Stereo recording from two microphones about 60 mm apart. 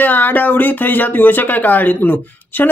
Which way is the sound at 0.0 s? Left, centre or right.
Left.